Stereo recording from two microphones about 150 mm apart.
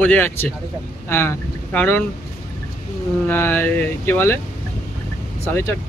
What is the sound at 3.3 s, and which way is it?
Speech, 15° left (ahead or behind).